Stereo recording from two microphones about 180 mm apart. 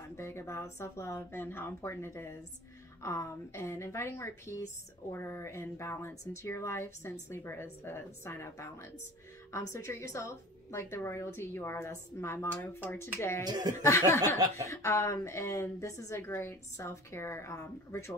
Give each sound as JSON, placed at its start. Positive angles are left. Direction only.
{"t": 0.1, "sound": "speech", "side_deg": 15}
{"t": 13.5, "sound": "speech", "side_deg": -20}
{"t": 13.8, "sound": "speech", "side_deg": 15}